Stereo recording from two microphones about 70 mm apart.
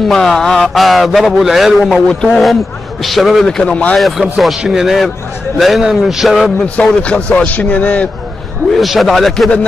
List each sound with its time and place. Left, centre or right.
0.1 s a man's voice: centre
2.0 s a man's voice: centre
4.4 s a man's voice: centre
6.6 s a man's voice: centre
8.7 s a man's voice: centre